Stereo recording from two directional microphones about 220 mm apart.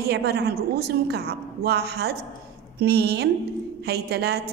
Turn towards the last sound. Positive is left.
turn(degrees=-50)  # may be behind; listen again after turning